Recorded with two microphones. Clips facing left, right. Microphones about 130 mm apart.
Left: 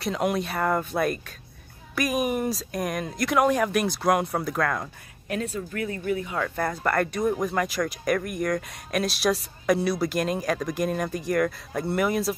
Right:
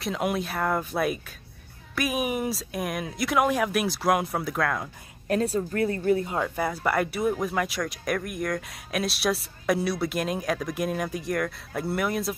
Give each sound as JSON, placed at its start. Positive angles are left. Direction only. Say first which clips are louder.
{"t": 0.0, "sound": "speech", "louder": "left 2 dB", "side_deg": 0}
{"t": 5.3, "sound": "speech", "louder": "right 5 dB", "side_deg": -35}
{"t": 6.5, "sound": "speech", "louder": "left 2 dB", "side_deg": -5}